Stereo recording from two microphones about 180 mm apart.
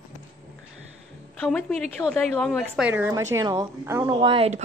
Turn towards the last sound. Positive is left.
turn(degrees=-35)  # may be behind; listen again after turning